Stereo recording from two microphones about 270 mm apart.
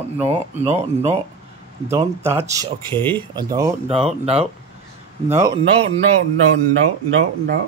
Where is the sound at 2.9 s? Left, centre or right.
Centre.